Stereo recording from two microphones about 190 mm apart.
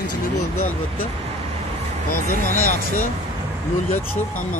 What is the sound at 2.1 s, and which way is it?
Speech, 45° left (ahead or behind).